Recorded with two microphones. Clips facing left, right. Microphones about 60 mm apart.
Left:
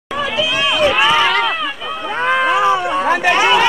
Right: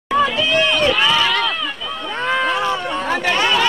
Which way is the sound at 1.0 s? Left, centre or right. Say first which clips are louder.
Left 3 dB; left.